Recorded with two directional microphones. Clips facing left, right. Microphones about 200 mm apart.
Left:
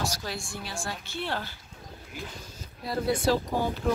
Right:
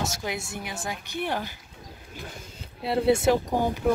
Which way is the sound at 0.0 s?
20° right (ahead or behind).